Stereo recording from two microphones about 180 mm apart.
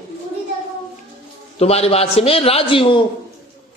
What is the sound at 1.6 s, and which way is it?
A man's voice, 35° left (ahead or behind).